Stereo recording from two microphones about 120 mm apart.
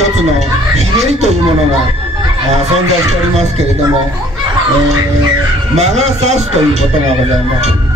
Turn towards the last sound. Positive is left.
turn(degrees=-70)  # may be behind; listen again after turning